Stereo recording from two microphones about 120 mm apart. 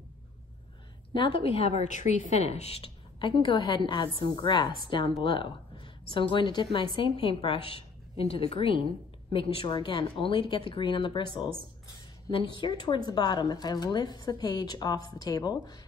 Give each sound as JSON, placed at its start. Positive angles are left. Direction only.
{"t": 1.1, "sound": "a woman's voice", "side_deg": 50}
{"t": 2.4, "sound": "a woman's voice", "side_deg": 65}
{"t": 3.2, "sound": "a woman's voice", "side_deg": 40}